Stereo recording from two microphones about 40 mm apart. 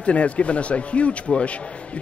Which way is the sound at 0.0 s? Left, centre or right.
Left.